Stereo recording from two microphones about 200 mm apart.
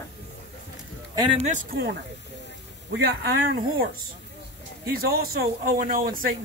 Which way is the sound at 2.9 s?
55° right (ahead or behind).